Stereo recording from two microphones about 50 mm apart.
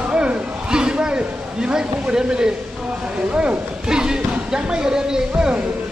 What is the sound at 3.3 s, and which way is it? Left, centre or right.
Speech, right.